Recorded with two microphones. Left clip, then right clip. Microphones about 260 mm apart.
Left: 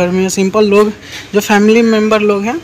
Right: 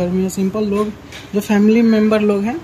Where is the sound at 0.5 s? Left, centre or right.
Left.